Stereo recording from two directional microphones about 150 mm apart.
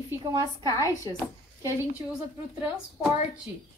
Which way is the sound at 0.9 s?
25° left (ahead or behind).